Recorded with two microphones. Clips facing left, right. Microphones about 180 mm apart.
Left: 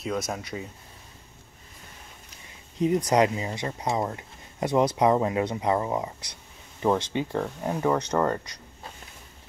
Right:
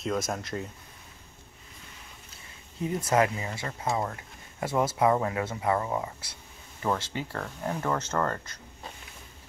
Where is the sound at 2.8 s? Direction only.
20° left (ahead or behind).